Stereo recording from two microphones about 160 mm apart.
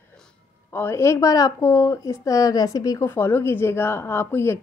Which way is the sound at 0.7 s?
15° left (ahead or behind).